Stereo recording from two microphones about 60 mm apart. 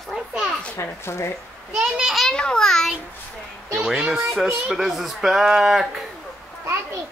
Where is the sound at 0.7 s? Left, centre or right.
Left.